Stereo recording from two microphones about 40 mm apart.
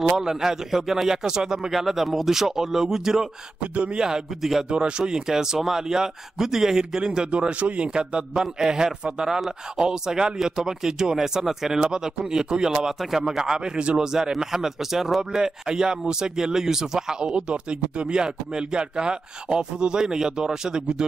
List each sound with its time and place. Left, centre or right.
0.0 s speech: centre
1.7 s speech: centre
3.7 s speech: right
4.4 s speech: centre
4.6 s speech: right
8.4 s speech: centre
15.7 s speech: centre
17.2 s speech: right